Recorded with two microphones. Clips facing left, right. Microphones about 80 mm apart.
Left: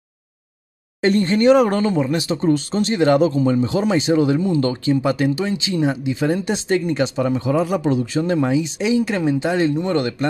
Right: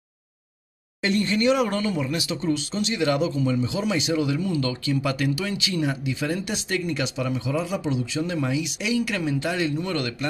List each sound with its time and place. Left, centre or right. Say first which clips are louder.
1.0 s speech: left 7 dB; left